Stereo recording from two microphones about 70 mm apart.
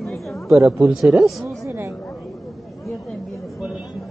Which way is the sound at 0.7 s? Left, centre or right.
Centre.